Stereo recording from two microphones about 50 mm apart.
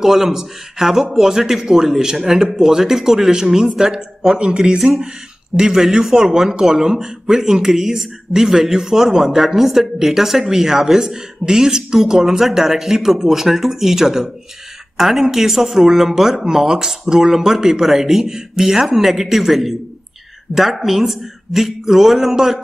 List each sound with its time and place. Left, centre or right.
0.0 s speech: centre
4.7 s a man's voice: centre